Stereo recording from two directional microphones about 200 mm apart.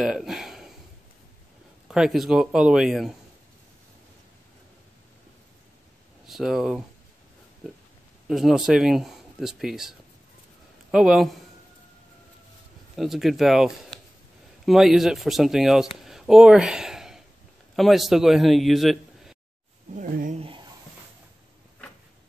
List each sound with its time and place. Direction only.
0.0 s a sound: centre (ahead or behind)
1.9 s speech: centre (ahead or behind)
6.2 s speech: centre (ahead or behind)
8.3 s speech: centre (ahead or behind)
12.9 s a man's voice: centre (ahead or behind)
20.0 s speech: 40° right (ahead or behind)
20.3 s a sound: 25° right (ahead or behind)